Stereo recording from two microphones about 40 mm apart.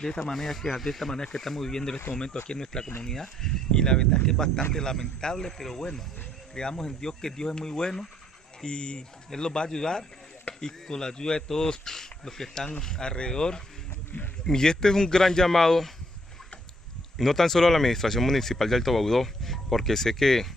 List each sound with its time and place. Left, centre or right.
0.0 s speech: centre
1.1 s speech: centre
17.2 s speech: centre